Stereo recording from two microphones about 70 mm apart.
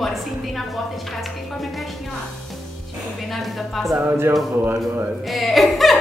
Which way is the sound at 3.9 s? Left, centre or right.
Right.